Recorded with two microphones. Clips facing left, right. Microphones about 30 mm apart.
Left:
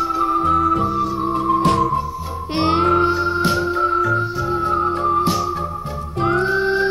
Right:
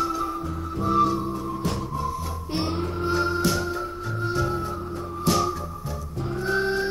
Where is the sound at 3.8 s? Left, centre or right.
Left.